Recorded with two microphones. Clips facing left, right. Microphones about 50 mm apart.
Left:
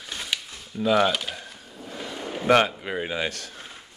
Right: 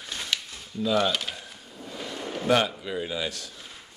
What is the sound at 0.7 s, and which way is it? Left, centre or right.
Speech, left.